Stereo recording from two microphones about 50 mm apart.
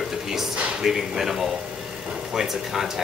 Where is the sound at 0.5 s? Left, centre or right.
Right.